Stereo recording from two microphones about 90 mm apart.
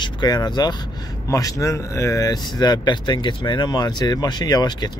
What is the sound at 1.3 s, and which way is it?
Speech, 40° left (ahead or behind).